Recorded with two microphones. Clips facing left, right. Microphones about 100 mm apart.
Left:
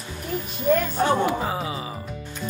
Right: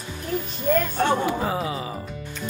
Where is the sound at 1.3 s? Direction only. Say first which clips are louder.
Right 1 dB; 20° left (ahead or behind).